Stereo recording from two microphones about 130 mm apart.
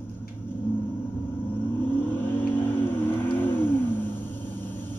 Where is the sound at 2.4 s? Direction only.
15° left (ahead or behind).